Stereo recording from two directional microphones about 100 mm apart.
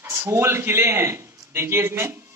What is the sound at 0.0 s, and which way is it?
A man's voice, 25° right (ahead or behind).